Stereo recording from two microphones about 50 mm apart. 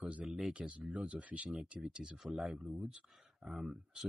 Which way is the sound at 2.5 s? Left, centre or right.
Centre.